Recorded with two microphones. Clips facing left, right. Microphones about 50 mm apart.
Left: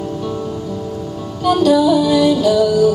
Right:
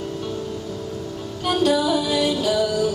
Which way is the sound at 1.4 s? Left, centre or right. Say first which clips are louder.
Left 7 dB; centre.